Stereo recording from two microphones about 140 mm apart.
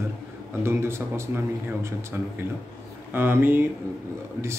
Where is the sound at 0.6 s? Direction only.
20° right (ahead or behind).